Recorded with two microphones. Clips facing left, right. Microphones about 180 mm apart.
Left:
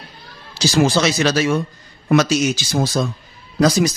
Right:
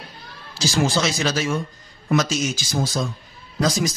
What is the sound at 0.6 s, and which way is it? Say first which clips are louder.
Speech: left 5 dB; 70° left (ahead or behind).